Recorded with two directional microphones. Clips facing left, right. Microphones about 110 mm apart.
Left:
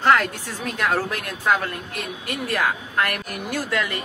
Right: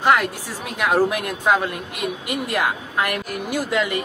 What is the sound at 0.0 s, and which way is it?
A woman's voice, 10° right (ahead or behind).